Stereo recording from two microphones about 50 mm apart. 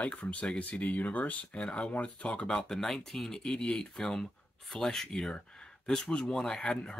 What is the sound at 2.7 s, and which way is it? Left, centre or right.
Speech, centre.